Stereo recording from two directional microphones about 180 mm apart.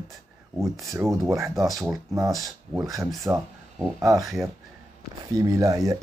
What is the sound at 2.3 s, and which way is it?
Speech, centre (ahead or behind).